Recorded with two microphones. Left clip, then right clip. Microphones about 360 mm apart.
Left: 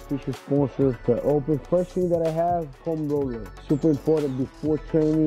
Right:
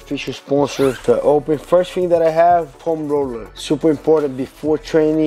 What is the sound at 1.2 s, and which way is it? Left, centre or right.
Speech, centre.